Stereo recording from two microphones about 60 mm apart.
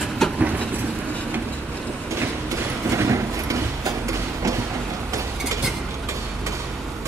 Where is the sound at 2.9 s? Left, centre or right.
Right.